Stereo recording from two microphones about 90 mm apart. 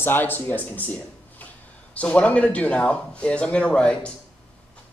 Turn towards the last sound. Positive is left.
turn(degrees=10)  # may be behind; listen again after turning